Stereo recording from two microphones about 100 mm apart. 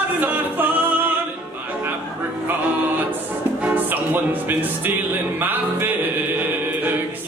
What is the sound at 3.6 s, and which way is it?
Music, 20° right (ahead or behind).